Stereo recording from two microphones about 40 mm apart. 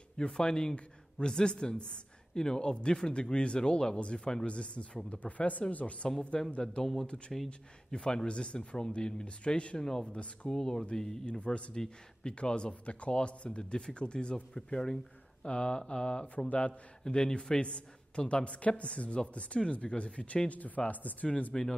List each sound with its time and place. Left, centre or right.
0.2 s a man's voice: left
6.0 s a man's voice: centre
10.5 s speech: centre
11.2 s a man's voice: left
17.0 s a man's voice: centre